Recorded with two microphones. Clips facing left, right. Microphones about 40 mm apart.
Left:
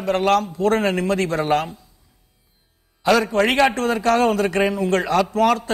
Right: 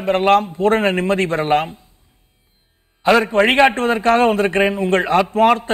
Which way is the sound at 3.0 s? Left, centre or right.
Right.